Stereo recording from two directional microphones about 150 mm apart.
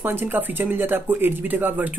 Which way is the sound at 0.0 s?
15° right (ahead or behind).